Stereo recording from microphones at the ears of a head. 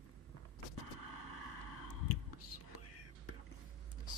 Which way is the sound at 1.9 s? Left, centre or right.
Left.